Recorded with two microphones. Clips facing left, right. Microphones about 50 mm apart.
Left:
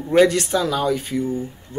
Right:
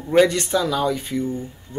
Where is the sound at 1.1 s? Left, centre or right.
Centre.